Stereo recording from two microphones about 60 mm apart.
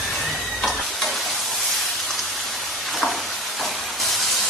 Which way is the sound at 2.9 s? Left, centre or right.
Centre.